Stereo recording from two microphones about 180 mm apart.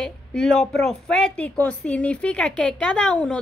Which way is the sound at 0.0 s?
5° left (ahead or behind).